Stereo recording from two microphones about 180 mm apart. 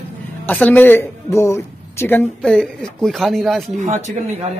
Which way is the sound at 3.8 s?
40° right (ahead or behind).